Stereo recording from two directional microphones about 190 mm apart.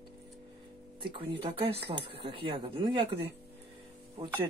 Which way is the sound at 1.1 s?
30° right (ahead or behind).